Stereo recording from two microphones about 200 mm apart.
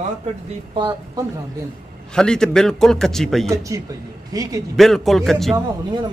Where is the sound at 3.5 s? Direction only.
15° right (ahead or behind).